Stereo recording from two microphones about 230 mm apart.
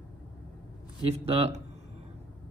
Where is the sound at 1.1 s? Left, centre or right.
Right.